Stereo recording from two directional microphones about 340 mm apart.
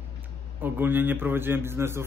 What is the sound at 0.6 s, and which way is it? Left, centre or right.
Speech, centre.